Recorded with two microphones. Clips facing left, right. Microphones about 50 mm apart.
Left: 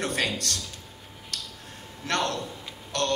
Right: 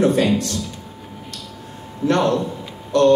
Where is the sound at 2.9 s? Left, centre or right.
Left.